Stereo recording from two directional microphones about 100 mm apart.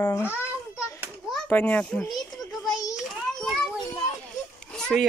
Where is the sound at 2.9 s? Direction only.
Centre (ahead or behind).